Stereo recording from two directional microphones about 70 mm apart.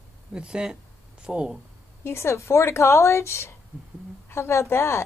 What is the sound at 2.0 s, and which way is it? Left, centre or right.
A woman's voice, left.